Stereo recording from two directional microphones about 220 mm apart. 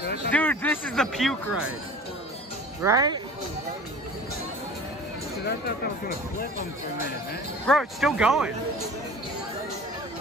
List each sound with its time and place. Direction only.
0.3 s speech: 10° left (ahead or behind)
2.8 s speech: 15° right (ahead or behind)
7.6 s speech: centre (ahead or behind)